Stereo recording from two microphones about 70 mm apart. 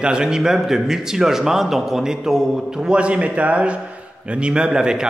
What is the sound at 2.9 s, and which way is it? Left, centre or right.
A man's voice, centre.